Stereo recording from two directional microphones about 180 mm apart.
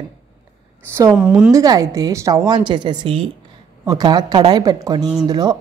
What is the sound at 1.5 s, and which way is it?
A woman's voice, 20° right (ahead or behind).